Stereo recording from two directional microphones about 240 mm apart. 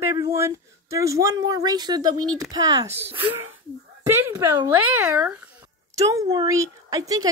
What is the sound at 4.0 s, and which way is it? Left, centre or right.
Speech, centre.